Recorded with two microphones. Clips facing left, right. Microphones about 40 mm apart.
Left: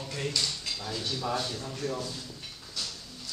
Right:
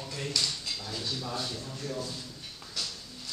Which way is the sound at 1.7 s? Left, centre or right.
Left.